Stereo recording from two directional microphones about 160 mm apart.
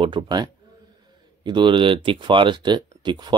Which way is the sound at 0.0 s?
30° right (ahead or behind).